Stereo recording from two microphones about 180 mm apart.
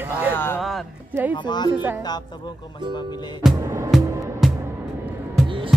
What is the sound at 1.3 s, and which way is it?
Speech, 25° left (ahead or behind).